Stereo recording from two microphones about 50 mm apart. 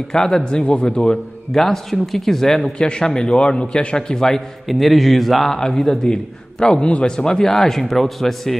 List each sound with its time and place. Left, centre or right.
0.1 s speech: centre
1.5 s speech: centre
4.6 s speech: centre